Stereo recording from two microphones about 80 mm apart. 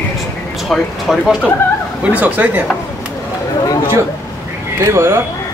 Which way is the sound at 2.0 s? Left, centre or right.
Centre.